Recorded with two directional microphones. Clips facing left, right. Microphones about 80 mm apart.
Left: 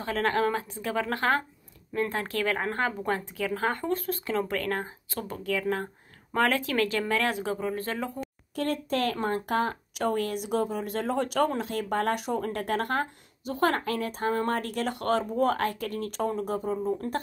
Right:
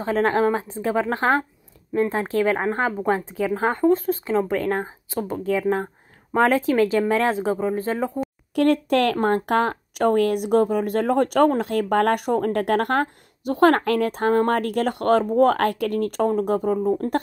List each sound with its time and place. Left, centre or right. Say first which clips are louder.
0.0 s speech: right 6 dB; right
8.5 s speech: right 10 dB; right